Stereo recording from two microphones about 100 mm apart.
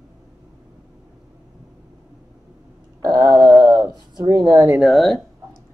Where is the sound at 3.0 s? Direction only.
35° right (ahead or behind).